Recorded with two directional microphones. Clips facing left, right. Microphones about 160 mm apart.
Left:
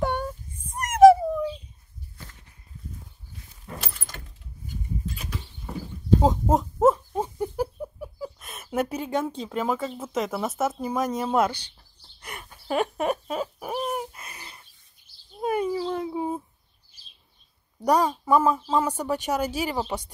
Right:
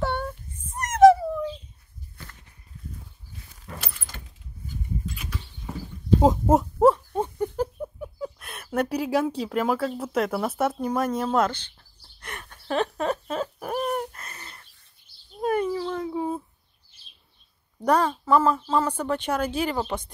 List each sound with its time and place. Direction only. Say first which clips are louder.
0.0 s child singing: left 1 dB; 10° left (ahead or behind)
5.0 s creak: even; 35° left (ahead or behind)
6.2 s a sound: right 3 dB; 5° right (ahead or behind)
8.7 s speech: right 2 dB; centre (ahead or behind)
12.2 s owl: right 1 dB; 10° left (ahead or behind)
15.4 s a sound: right 1 dB; 10° left (ahead or behind)
17.8 s speech: even; 10° left (ahead or behind)